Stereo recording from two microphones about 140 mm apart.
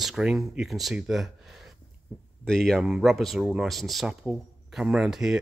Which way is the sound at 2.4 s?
5° left (ahead or behind).